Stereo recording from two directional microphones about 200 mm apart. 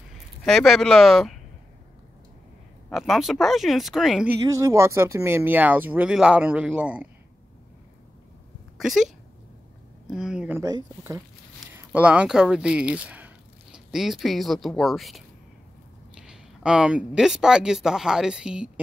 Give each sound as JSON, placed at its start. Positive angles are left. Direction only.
{"t": 0.5, "sound": "speech", "side_deg": 0}
{"t": 2.9, "sound": "speech", "side_deg": 0}
{"t": 4.5, "sound": "speech", "side_deg": -15}
{"t": 8.7, "sound": "speech", "side_deg": 0}
{"t": 10.6, "sound": "speech", "side_deg": -15}